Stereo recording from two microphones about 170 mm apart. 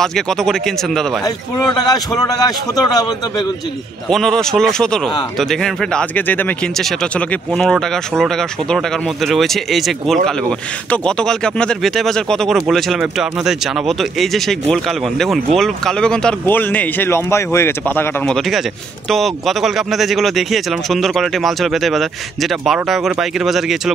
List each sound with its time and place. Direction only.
0.0 s speech: 5° left (ahead or behind)
2.2 s a man's voice: 25° left (ahead or behind)
4.1 s speech: 5° left (ahead or behind)